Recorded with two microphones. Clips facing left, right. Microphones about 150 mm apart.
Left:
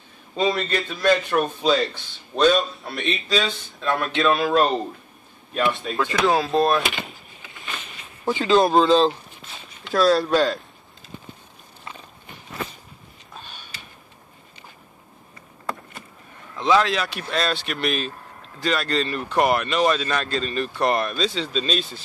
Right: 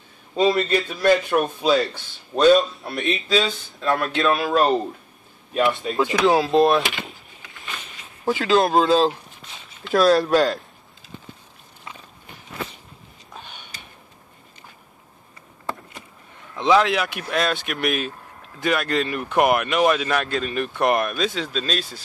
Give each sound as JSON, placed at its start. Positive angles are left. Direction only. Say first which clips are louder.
{"t": 0.4, "sound": "a man's voice", "louder": "right 4 dB", "side_deg": -5}
{"t": 5.7, "sound": "a man's voice", "louder": "right 2 dB", "side_deg": 0}
{"t": 5.9, "sound": "speech", "louder": "right 3 dB", "side_deg": -20}
{"t": 6.5, "sound": "vehicle", "louder": "right 3 dB", "side_deg": 0}
{"t": 8.3, "sound": "speech", "louder": "left 1 dB", "side_deg": -5}
{"t": 9.9, "sound": "speech", "louder": "right 2 dB", "side_deg": -20}
{"t": 16.5, "sound": "speech", "louder": "right 2 dB", "side_deg": -15}